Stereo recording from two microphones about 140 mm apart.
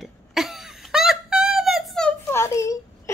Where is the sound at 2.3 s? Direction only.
20° left (ahead or behind).